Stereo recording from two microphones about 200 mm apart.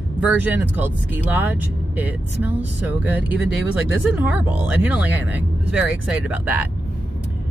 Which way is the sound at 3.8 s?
75° left (ahead or behind).